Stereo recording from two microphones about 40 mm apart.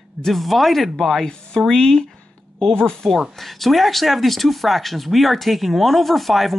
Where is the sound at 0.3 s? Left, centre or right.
Centre.